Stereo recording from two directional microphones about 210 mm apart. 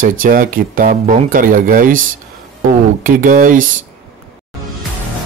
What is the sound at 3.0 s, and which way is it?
Speech, 40° right (ahead or behind).